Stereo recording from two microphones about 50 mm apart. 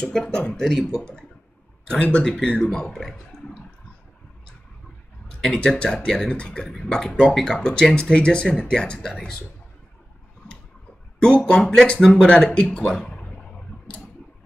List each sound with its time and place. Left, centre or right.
0.0 s speech: centre
3.0 s a sound: centre
5.7 s speech: centre
6.7 s speech: centre
11.1 s speech: centre